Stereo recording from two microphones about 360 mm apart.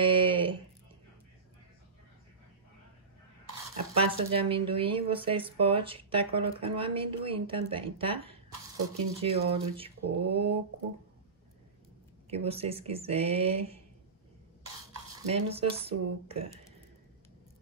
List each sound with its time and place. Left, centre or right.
0.0 s a sound: centre
3.9 s speech: centre
12.3 s speech: centre
15.2 s speech: centre